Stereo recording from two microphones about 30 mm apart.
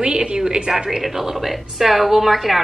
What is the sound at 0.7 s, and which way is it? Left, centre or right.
A woman's voice, centre.